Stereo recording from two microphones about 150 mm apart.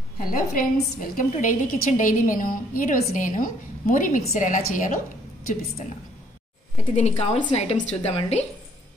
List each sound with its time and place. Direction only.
0.2 s a woman's voice: 70° left (ahead or behind)
4.3 s a woman's voice: 50° left (ahead or behind)
7.0 s a woman's voice: 50° left (ahead or behind)